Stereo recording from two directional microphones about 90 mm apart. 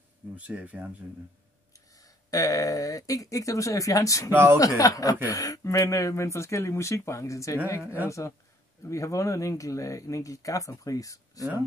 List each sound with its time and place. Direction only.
0.4 s speech: 15° right (ahead or behind)
2.0 s speech: 40° left (ahead or behind)
4.3 s speech: 25° right (ahead or behind)
4.6 s speech: 40° left (ahead or behind)